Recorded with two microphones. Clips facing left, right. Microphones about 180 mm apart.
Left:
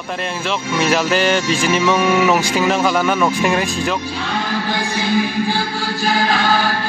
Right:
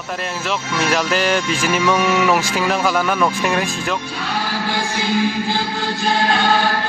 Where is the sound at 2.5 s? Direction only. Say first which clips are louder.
Left 2 dB; 5° left (ahead or behind).